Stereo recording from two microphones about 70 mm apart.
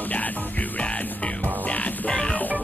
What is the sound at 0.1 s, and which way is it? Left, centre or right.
Music, left.